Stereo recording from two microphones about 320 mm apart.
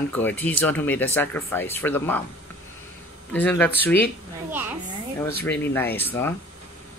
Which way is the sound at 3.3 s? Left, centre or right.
Centre.